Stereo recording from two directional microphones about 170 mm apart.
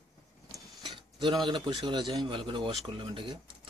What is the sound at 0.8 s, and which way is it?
Mechanisms, 30° right (ahead or behind).